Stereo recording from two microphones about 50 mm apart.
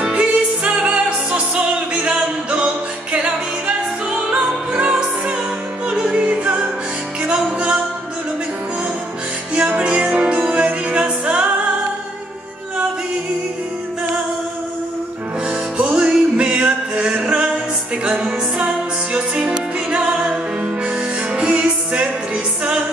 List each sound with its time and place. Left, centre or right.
0.0 s music: centre
5.9 s music: right
9.6 s music: right
10.3 s music: right
15.4 s music: right